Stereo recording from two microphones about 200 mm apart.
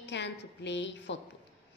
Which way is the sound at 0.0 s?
60° left (ahead or behind).